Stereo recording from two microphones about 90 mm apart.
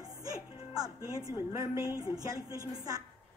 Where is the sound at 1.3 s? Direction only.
35° right (ahead or behind).